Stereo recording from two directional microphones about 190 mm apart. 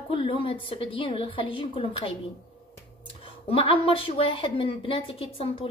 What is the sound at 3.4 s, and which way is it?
A woman's voice, 30° left (ahead or behind).